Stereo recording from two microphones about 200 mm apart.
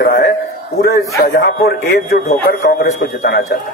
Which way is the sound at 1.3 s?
45° left (ahead or behind).